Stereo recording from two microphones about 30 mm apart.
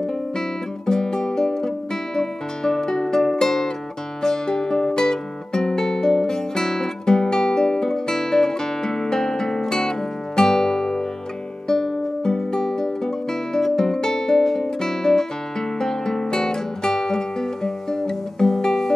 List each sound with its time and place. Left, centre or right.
0.0 s music: left
4.2 s music: left
16.9 s guitar: centre